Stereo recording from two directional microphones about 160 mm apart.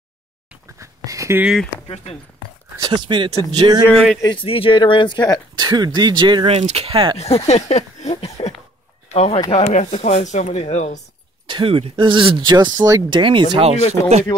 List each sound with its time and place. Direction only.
0.7 s a sound: 20° right (ahead or behind)
1.4 s speech: 5° right (ahead or behind)
2.8 s speech: 30° right (ahead or behind)
3.9 s speech: 5° left (ahead or behind)
4.2 s speech: 30° left (ahead or behind)
5.6 s speech: 25° right (ahead or behind)
7.2 s speech: 40° left (ahead or behind)
11.4 s speech: 35° right (ahead or behind)